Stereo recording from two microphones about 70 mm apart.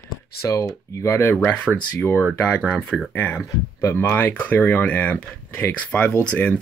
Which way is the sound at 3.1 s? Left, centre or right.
Left.